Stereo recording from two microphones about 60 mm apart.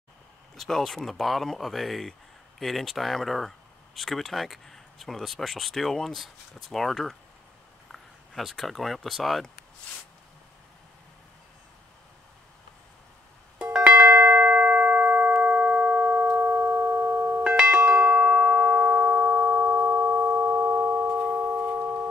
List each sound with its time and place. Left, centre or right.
0.6 s speech: centre
13.8 s ding-dong: right
14.2 s music: right
17.4 s doorbell: centre
18.1 s music: right
21.4 s singing bowl: right